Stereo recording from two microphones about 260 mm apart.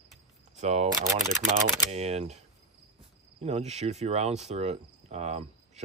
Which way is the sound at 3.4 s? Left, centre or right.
Right.